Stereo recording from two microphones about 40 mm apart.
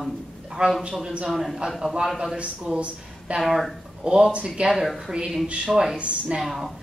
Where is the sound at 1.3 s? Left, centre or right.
Centre.